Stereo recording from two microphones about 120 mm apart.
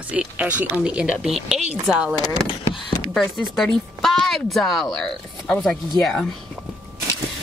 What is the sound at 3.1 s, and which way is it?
Speech, centre (ahead or behind).